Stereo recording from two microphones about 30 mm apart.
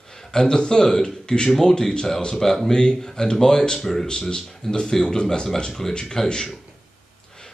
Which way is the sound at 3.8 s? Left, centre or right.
Centre.